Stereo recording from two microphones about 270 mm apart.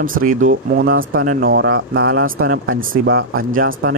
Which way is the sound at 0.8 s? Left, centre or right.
Right.